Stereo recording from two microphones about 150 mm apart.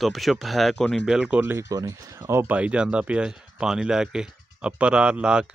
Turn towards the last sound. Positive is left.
turn(degrees=-5)  # may be behind; listen again after turning